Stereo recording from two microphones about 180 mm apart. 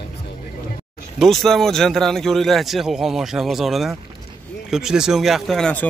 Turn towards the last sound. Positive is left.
turn(degrees=5)  # may be behind; listen again after turning